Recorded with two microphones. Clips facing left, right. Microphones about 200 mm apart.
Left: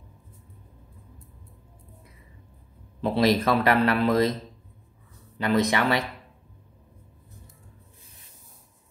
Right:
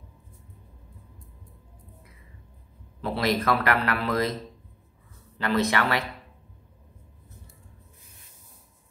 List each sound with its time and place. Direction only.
3.0 s a man's voice: 25° left (ahead or behind)
5.4 s a man's voice: 20° left (ahead or behind)